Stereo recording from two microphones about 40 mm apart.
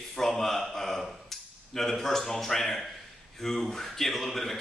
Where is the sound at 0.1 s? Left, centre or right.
Centre.